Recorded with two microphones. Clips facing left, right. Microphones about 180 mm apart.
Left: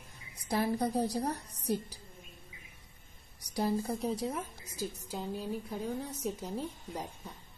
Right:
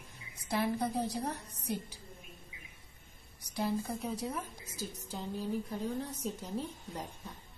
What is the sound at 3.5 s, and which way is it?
Speech, 35° left (ahead or behind).